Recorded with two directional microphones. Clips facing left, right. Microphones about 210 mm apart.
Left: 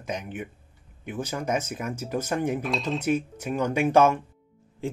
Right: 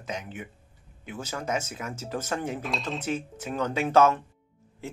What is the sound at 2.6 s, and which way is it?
Speech, centre (ahead or behind).